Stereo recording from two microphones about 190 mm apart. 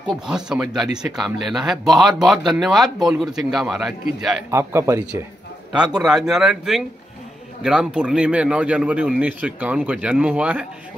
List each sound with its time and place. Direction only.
0.3 s speech: 5° right (ahead or behind)
4.5 s speech: 15° right (ahead or behind)
5.9 s speech: 5° right (ahead or behind)